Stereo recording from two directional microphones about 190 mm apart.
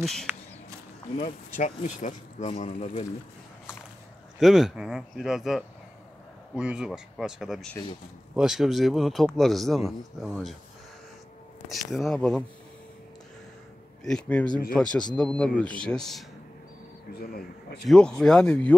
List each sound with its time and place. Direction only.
0.0 s speech: centre (ahead or behind)
1.6 s speech: 40° left (ahead or behind)
4.4 s speech: centre (ahead or behind)
11.7 s speech: centre (ahead or behind)
14.0 s speech: 5° left (ahead or behind)
17.2 s speech: 50° left (ahead or behind)
17.8 s speech: 5° left (ahead or behind)